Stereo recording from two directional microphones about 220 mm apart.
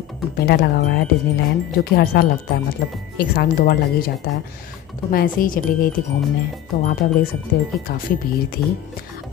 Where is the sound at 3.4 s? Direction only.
40° left (ahead or behind).